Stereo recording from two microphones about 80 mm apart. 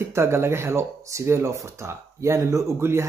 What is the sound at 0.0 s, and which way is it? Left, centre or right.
Speech, right.